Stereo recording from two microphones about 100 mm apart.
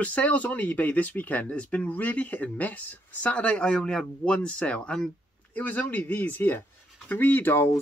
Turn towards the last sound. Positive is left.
turn(degrees=25)  # may be behind; listen again after turning